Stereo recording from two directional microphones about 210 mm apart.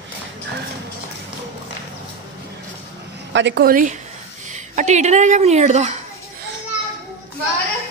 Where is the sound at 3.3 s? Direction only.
55° right (ahead or behind); by 5.9 s 30° right (ahead or behind).